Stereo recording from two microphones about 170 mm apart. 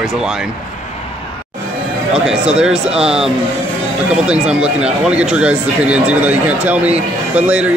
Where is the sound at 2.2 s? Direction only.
5° right (ahead or behind).